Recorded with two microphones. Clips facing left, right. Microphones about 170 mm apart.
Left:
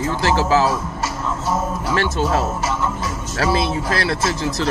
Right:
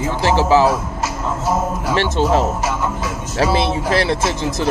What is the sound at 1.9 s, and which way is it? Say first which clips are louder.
Speech: right 3 dB; 20° right (ahead or behind).